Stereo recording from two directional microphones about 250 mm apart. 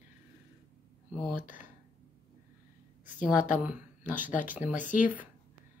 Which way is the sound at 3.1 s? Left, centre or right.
Centre.